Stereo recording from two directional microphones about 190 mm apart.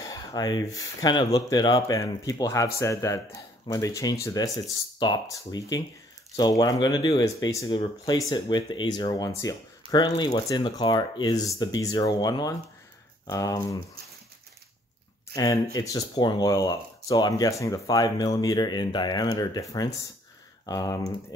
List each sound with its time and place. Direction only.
0.0 s speech: 20° left (ahead or behind)
15.3 s speech: 20° left (ahead or behind)